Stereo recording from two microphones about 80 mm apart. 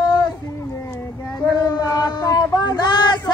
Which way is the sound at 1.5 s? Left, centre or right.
Left.